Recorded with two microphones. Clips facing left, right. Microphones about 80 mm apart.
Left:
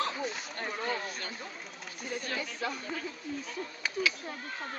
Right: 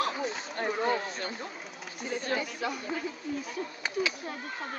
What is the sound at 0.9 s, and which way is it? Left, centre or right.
Speech, right.